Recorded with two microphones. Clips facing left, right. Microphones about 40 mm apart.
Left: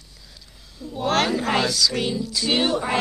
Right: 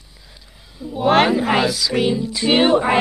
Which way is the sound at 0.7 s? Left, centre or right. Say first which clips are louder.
Right 7 dB; centre.